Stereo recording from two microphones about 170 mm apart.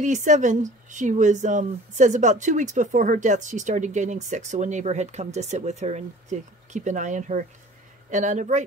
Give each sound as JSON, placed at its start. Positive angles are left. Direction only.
{"t": 0.0, "sound": "speech", "side_deg": -45}